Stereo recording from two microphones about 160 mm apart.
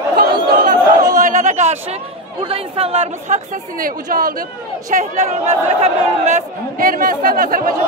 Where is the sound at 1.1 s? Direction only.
55° right (ahead or behind).